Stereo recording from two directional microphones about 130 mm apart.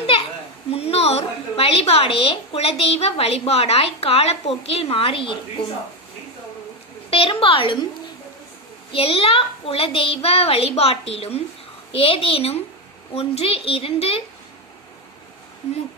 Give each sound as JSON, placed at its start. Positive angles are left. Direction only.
{"t": 0.7, "sound": "a woman's voice", "side_deg": 50}
{"t": 7.1, "sound": "a woman's voice", "side_deg": 45}
{"t": 8.9, "sound": "a woman's voice", "side_deg": 45}